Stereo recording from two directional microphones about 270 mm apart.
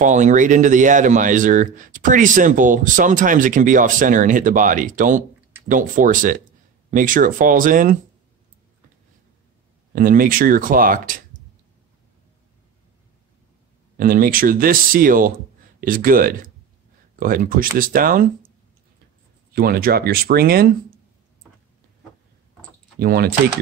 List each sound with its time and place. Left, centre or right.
0.0 s speech: right
9.9 s speech: right
13.9 s speech: right
19.5 s speech: right
22.9 s speech: right